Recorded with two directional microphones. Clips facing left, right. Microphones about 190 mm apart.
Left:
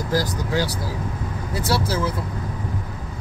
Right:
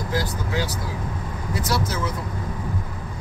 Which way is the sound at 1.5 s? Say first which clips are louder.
Left 2 dB; 30° left (ahead or behind).